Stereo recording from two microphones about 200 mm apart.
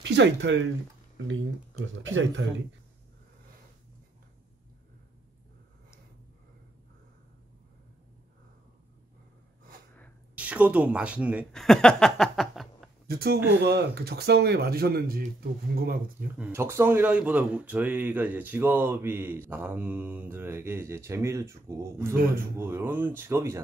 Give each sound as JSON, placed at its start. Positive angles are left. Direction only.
{"t": 0.0, "sound": "speech", "side_deg": -60}
{"t": 10.3, "sound": "speech", "side_deg": -5}
{"t": 13.0, "sound": "speech", "side_deg": -50}
{"t": 16.3, "sound": "speech", "side_deg": -10}